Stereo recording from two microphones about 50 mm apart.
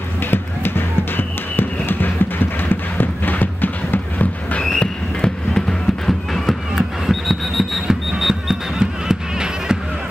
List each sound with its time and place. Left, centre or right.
0.3 s music: left
4.7 s music: centre
6.7 s a sound: centre